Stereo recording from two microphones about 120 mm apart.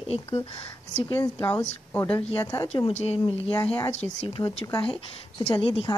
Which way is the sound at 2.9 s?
60° left (ahead or behind).